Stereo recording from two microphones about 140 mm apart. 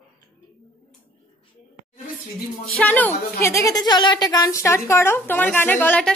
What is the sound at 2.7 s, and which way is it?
Speech, 10° left (ahead or behind).